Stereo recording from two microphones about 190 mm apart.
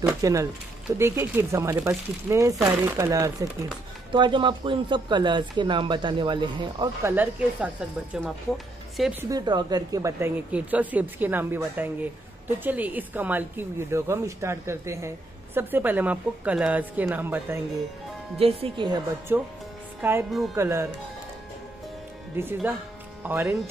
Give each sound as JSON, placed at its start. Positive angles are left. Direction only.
{"t": 0.2, "sound": "speech", "side_deg": -15}
{"t": 9.2, "sound": "speech", "side_deg": -20}
{"t": 18.4, "sound": "speech", "side_deg": -30}
{"t": 19.3, "sound": "speech", "side_deg": -10}
{"t": 22.3, "sound": "speech", "side_deg": -10}